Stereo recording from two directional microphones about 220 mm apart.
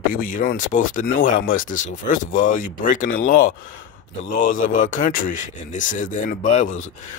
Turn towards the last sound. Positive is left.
turn(degrees=35)  # may be behind; listen again after turning